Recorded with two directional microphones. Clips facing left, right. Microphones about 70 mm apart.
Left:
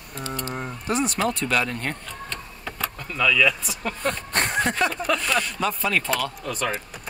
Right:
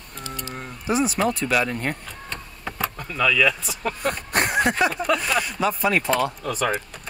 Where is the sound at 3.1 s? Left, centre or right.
Centre.